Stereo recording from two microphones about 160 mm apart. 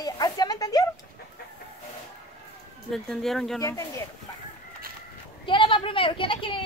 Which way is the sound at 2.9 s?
Centre (ahead or behind).